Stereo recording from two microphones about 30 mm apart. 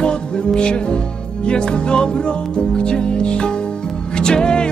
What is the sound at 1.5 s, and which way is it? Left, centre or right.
Music, left.